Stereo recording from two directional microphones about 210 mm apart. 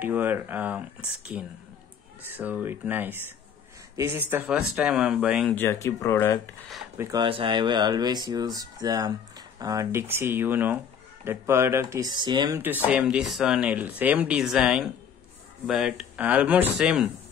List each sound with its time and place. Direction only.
0.0 s speech: 10° right (ahead or behind)
5.5 s speech: 10° left (ahead or behind)
7.0 s speech: 20° right (ahead or behind)
12.5 s speech: 10° right (ahead or behind)